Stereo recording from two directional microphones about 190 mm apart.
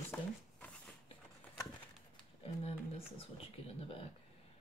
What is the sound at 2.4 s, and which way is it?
Speech, 30° left (ahead or behind).